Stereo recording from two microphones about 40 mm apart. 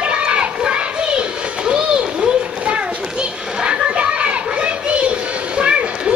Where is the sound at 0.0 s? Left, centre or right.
Right.